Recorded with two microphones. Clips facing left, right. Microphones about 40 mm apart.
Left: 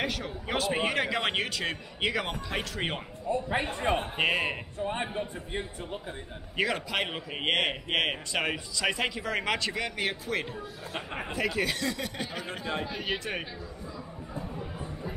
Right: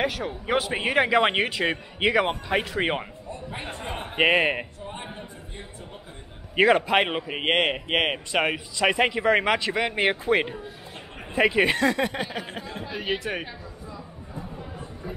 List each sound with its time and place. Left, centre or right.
0.0 s a man's voice: centre
3.7 s a man's voice: left
4.0 s speech: right
6.5 s a man's voice: right
12.8 s speech: centre